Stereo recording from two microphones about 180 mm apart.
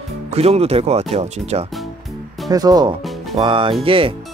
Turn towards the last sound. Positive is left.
turn(degrees=-30)  # may be behind; listen again after turning